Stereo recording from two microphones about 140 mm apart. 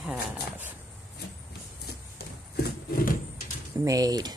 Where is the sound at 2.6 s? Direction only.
90° left.